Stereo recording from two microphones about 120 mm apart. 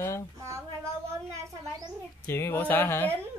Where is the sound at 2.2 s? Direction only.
20° left (ahead or behind).